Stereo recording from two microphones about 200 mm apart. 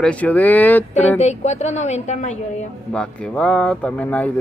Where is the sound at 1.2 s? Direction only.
35° left (ahead or behind).